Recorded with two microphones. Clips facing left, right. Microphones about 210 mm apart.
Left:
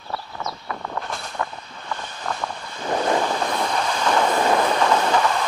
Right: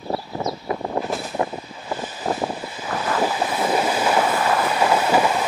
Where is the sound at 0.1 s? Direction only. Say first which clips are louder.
Right 6 dB; 25° right (ahead or behind).